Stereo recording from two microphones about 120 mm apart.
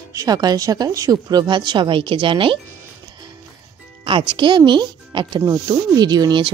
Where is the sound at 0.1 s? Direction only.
30° right (ahead or behind); by 2.6 s 45° right (ahead or behind).